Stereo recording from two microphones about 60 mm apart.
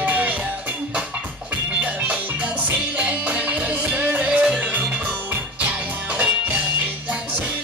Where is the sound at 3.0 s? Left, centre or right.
Right.